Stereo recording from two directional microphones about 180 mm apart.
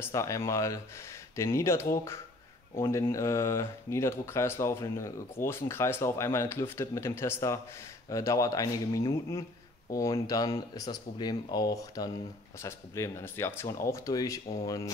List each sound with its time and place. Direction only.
0.0 s speech: 15° left (ahead or behind)